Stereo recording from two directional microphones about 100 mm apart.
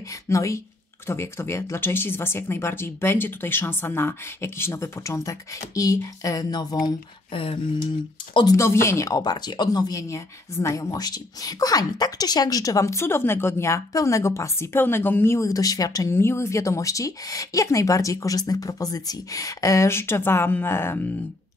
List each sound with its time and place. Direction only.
0.3 s speech: 30° left (ahead or behind)
7.3 s speech: 65° left (ahead or behind)
8.5 s speech: 30° left (ahead or behind)